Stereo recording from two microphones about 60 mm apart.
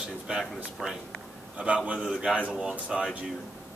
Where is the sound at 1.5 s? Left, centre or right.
Right.